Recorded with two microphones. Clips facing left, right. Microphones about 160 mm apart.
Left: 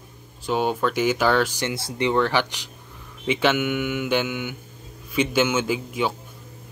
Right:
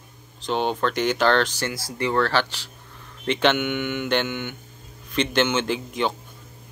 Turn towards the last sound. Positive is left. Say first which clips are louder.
# even
turn(degrees=5)  # may be behind; listen again after turning